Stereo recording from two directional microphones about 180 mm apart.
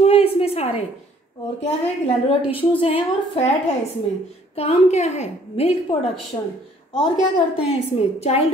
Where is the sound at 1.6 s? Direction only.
35° left (ahead or behind).